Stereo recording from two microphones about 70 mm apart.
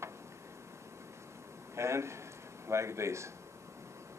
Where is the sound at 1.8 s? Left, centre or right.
Right.